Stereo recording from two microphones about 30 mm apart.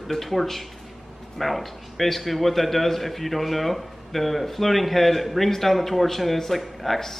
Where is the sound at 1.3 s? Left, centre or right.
Centre.